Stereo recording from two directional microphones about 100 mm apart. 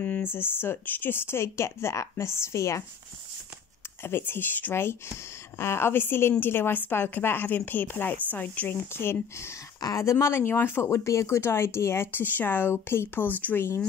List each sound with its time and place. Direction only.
0.0 s speech: 20° left (ahead or behind)
4.0 s speech: 20° left (ahead or behind)